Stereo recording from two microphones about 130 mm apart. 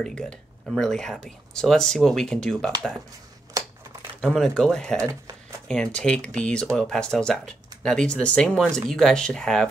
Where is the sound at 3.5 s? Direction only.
25° right (ahead or behind).